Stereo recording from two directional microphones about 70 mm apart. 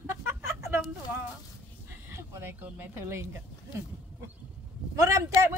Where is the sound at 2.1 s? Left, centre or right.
Right.